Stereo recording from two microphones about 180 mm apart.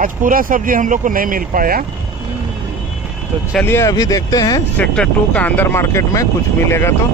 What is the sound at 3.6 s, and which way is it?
Speech, 15° left (ahead or behind).